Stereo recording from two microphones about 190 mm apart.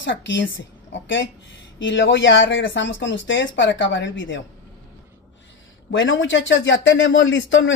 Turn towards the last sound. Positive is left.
turn(degrees=80)